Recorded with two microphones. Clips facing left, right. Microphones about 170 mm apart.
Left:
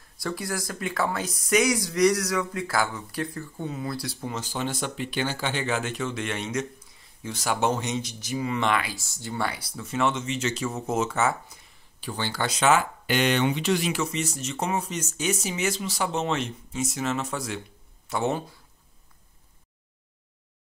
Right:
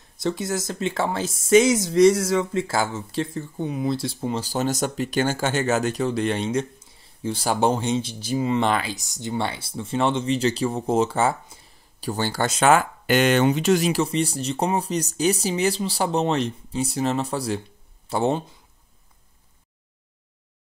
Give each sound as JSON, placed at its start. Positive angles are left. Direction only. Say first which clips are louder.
{"t": 0.2, "sound": "speech", "louder": "right 5 dB", "side_deg": -20}
{"t": 8.9, "sound": "speech", "louder": "right 5 dB", "side_deg": -20}
{"t": 12.0, "sound": "speech", "louder": "right 5 dB", "side_deg": -40}